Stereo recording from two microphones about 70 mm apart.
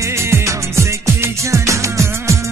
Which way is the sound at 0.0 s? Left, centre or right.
Right.